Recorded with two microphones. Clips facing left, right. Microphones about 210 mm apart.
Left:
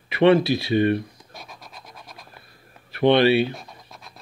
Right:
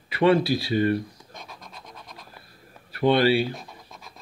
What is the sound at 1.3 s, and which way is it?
Scratch, 5° left (ahead or behind).